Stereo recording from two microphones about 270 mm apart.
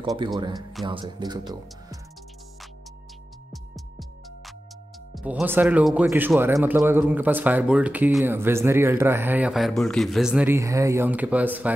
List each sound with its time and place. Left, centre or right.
0.0 s speech: centre
5.1 s speech: centre